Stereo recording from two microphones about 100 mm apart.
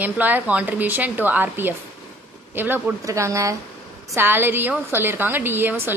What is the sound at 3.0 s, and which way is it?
Speech, 30° right (ahead or behind).